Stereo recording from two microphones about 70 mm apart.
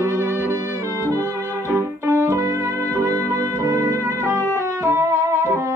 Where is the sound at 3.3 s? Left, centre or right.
Right.